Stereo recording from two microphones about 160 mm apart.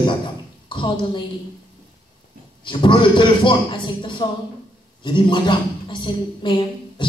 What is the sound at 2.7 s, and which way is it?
A woman's voice, 30° left (ahead or behind).